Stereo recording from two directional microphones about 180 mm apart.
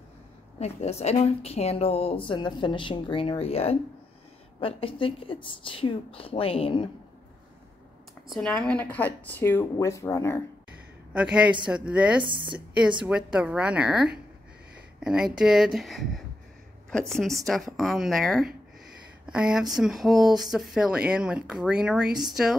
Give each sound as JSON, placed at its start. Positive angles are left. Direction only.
{"t": 0.6, "sound": "a woman's voice", "side_deg": 35}
{"t": 8.3, "sound": "speech", "side_deg": 5}
{"t": 11.1, "sound": "speech", "side_deg": -5}
{"t": 12.3, "sound": "a woman's voice", "side_deg": -25}
{"t": 12.5, "sound": "a woman's voice", "side_deg": -5}